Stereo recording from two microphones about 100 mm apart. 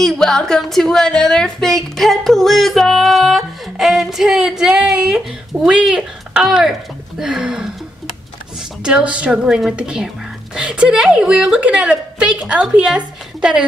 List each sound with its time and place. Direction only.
0.0 s a woman's voice: 5° left (ahead or behind)
8.8 s a woman's voice: 10° right (ahead or behind)